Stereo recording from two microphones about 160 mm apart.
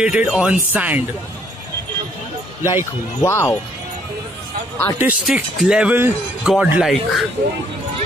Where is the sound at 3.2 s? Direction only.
15° left (ahead or behind).